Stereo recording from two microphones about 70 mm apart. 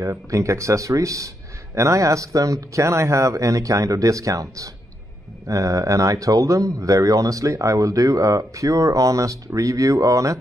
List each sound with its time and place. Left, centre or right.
0.0 s speech: right